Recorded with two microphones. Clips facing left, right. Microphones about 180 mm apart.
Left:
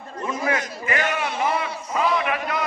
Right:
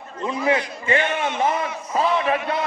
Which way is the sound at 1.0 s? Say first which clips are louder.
Right 2 dB; 35° left (ahead or behind).